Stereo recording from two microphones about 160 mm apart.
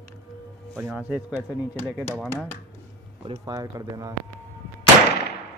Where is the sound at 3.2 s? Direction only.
25° right (ahead or behind).